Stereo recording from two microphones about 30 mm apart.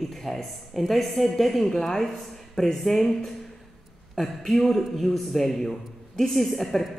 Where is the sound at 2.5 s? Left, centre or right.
Centre.